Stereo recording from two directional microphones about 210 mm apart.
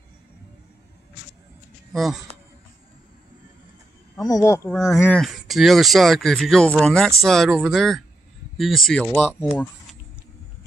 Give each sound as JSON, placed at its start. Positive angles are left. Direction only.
{"t": 1.9, "sound": "speech", "side_deg": 0}
{"t": 4.3, "sound": "speech", "side_deg": 15}
{"t": 4.6, "sound": "speech", "side_deg": 0}